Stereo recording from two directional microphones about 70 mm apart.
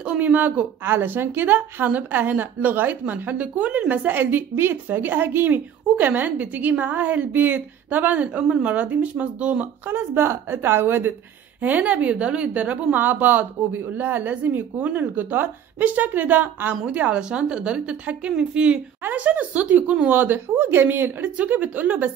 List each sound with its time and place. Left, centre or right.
0.0 s speech: right
9.8 s a woman's voice: right